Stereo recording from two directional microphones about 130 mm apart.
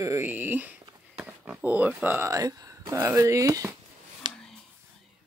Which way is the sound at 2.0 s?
15° right (ahead or behind).